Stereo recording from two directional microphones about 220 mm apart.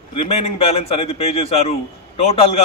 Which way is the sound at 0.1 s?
30° left (ahead or behind).